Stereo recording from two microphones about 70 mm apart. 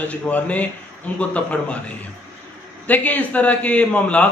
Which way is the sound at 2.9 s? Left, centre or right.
Left.